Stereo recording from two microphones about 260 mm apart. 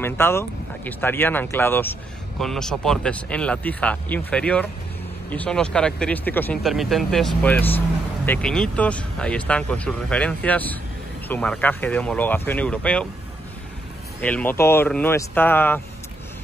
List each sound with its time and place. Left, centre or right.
0.0 s speech: centre
14.2 s speech: centre